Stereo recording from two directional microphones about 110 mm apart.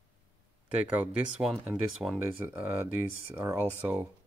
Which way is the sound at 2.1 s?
20° right (ahead or behind).